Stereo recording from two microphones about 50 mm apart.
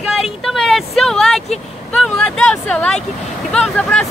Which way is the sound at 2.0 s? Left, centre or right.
Centre.